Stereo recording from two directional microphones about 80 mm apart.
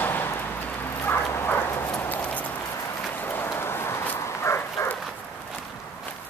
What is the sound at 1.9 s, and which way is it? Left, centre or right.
Clip-clop, left.